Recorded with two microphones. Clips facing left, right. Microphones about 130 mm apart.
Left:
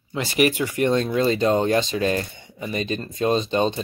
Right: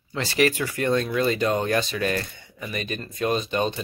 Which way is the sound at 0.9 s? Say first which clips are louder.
Even; 30° left (ahead or behind).